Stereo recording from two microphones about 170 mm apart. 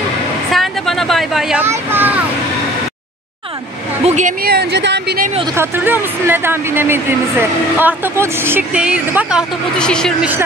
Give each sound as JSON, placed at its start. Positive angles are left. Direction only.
{"t": 0.5, "sound": "vehicle", "side_deg": 0}
{"t": 1.6, "sound": "speech", "side_deg": -10}
{"t": 4.0, "sound": "a sound", "side_deg": -40}
{"t": 4.4, "sound": "speech", "side_deg": -70}
{"t": 5.6, "sound": "speech", "side_deg": -15}